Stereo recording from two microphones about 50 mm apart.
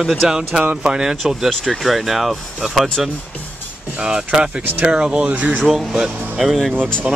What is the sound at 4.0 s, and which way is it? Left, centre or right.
Speech, centre.